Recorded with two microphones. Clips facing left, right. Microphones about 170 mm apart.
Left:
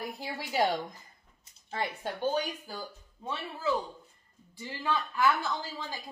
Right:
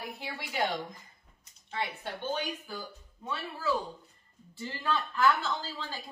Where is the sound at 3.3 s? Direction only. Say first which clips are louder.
Left 1 dB; 20° left (ahead or behind).